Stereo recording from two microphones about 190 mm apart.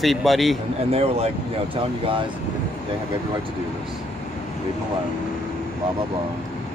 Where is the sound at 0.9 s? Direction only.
30° right (ahead or behind).